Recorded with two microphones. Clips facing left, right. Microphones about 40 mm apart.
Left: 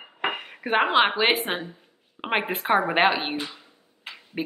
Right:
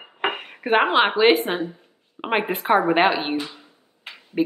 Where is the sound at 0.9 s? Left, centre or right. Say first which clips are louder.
Right 2 dB; centre.